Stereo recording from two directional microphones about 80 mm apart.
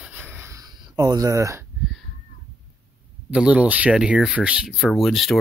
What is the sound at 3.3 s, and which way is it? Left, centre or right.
Speech, centre.